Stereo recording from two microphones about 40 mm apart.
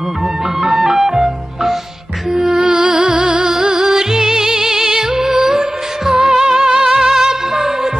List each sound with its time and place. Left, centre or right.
0.6 s music: centre
2.6 s music: right